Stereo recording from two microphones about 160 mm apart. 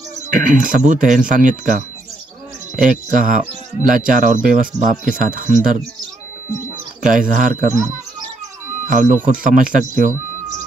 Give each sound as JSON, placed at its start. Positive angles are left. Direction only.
{"t": 0.3, "sound": "speech", "side_deg": -55}
{"t": 7.0, "sound": "speech", "side_deg": -55}
{"t": 8.8, "sound": "speech", "side_deg": -50}